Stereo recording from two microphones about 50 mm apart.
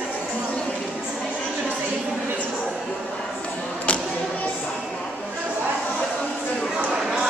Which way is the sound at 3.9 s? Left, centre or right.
Left.